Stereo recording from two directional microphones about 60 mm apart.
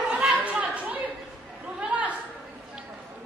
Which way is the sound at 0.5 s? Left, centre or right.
Right.